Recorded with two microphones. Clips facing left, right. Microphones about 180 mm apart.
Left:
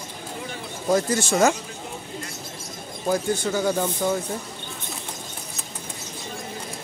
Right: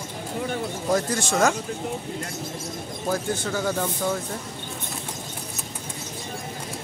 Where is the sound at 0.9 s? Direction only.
5° left (ahead or behind).